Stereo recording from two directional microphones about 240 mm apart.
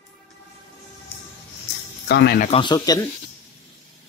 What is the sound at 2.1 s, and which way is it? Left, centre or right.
Speech, left.